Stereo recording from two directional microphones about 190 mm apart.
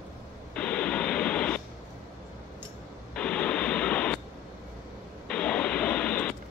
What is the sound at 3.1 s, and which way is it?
Radio, 5° left (ahead or behind).